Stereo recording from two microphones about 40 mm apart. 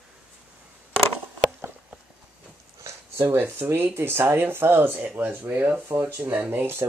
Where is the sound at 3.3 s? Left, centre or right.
Right.